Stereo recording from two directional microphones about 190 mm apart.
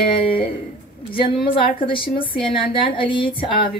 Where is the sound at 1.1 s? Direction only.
25° left (ahead or behind).